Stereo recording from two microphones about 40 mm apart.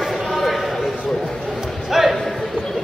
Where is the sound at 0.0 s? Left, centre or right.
Centre.